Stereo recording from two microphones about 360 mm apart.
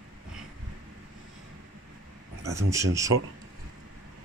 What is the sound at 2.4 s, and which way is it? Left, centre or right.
Speech, centre.